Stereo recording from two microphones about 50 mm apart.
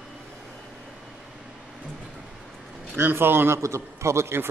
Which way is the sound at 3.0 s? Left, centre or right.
Right.